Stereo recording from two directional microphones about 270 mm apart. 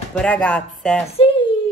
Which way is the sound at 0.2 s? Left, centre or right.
Centre.